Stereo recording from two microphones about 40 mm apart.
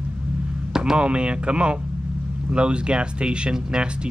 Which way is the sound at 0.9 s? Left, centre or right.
Right.